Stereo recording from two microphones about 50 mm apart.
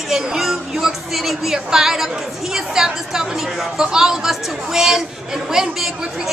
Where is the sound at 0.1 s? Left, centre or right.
Centre.